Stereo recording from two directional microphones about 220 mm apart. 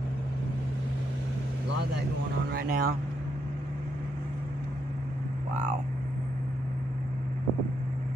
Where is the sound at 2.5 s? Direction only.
45° right (ahead or behind).